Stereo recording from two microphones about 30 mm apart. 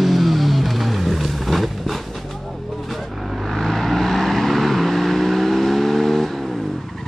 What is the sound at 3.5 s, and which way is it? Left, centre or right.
Vehicle, centre.